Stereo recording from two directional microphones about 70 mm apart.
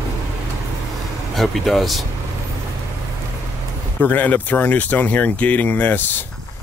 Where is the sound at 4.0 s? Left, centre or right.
Left.